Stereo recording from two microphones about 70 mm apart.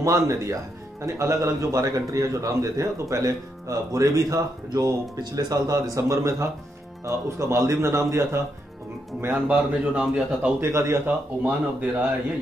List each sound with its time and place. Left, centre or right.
0.0 s a man's voice: right
9.3 s speech: centre
10.6 s speech: right
11.1 s speech: right